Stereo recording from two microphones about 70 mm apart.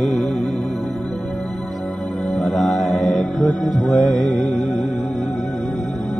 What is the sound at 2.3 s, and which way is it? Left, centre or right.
Music, centre.